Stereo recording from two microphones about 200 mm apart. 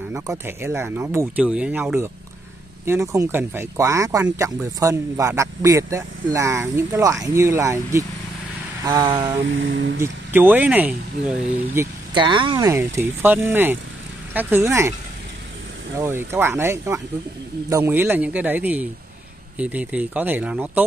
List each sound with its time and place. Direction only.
0.1 s speech: 15° right (ahead or behind)
8.8 s vehicle: 20° right (ahead or behind)
9.5 s speech: 65° right (ahead or behind)
10.3 s speech: 10° right (ahead or behind)
12.1 s speech: 25° right (ahead or behind)
16.0 s speech: 10° right (ahead or behind)